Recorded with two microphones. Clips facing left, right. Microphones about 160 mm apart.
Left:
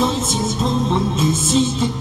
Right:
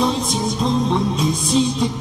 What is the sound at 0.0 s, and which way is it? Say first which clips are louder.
Music: even; centre (ahead or behind).